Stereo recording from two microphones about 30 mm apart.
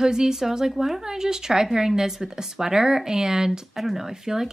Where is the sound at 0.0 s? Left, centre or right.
Right.